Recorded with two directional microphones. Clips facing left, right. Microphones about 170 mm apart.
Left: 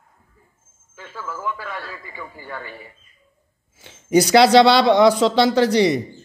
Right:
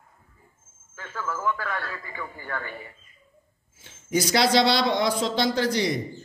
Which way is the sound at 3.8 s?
70° left (ahead or behind).